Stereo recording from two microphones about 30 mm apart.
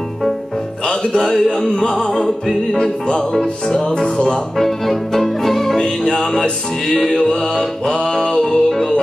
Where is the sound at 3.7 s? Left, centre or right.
Left.